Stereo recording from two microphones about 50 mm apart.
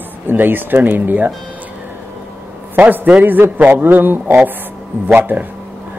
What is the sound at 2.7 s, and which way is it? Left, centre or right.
A man's voice, right.